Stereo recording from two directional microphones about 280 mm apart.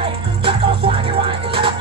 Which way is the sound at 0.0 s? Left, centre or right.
Centre.